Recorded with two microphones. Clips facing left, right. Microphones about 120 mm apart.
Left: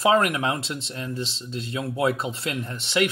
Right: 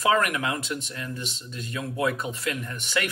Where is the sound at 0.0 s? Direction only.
30° left (ahead or behind).